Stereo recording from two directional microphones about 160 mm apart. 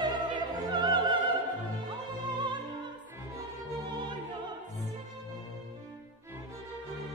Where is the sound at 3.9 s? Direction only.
30° right (ahead or behind).